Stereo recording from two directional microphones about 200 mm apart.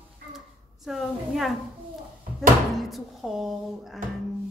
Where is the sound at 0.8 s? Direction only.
Centre (ahead or behind).